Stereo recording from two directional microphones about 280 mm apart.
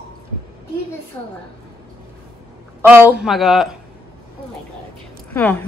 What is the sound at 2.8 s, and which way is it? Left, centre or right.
A woman's voice, centre.